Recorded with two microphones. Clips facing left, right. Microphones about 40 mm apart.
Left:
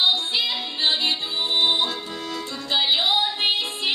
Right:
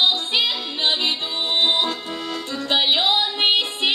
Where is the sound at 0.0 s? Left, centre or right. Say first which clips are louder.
Right 2 dB; right.